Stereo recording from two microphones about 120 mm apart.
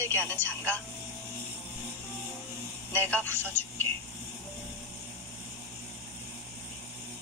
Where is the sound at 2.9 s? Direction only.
15° left (ahead or behind).